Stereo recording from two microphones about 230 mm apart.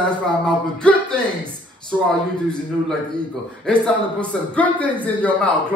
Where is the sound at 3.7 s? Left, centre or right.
Centre.